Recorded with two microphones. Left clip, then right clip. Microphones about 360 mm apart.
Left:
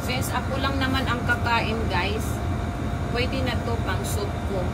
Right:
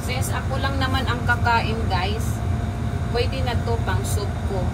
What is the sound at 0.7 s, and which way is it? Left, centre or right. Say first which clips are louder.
Speech: right 1 dB; centre.